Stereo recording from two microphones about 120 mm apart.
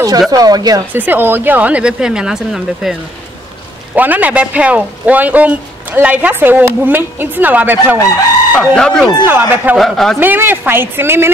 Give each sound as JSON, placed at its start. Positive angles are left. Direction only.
{"t": 0.3, "sound": "speech", "side_deg": -30}
{"t": 0.9, "sound": "speech", "side_deg": -15}
{"t": 8.5, "sound": "speech", "side_deg": 5}
{"t": 9.2, "sound": "speech", "side_deg": -15}
{"t": 9.8, "sound": "a man's voice", "side_deg": 0}
{"t": 10.2, "sound": "speech", "side_deg": -15}